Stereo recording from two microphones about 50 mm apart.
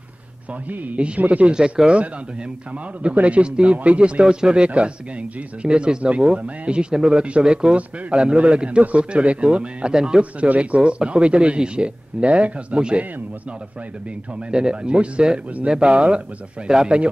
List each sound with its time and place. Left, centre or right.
0.7 s speech: right
1.5 s speech: centre
14.5 s speech: centre